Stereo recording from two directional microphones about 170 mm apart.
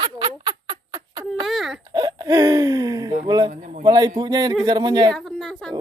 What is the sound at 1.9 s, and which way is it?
Speech, 25° right (ahead or behind).